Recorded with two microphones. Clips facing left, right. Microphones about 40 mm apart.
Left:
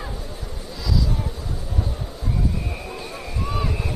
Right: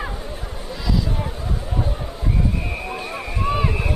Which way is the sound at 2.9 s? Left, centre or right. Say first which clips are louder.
Right 4 dB; right.